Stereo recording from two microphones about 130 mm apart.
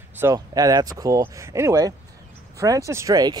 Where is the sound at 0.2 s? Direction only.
25° right (ahead or behind).